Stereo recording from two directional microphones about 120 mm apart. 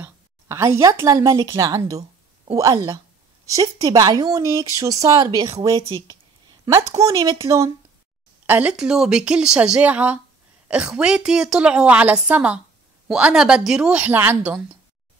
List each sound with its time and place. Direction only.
0.0 s a woman's voice: 25° right (ahead or behind)
7.0 s speech: 30° right (ahead or behind)
8.5 s a woman's voice: 10° right (ahead or behind)